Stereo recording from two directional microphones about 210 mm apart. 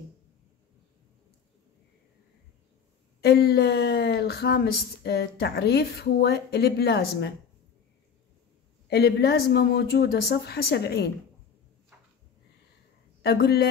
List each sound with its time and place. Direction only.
3.2 s speech: 50° left (ahead or behind)
8.8 s speech: 50° left (ahead or behind)
13.2 s speech: 50° left (ahead or behind)